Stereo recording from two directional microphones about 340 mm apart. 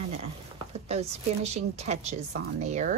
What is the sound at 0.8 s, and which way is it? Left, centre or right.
A woman's voice, centre.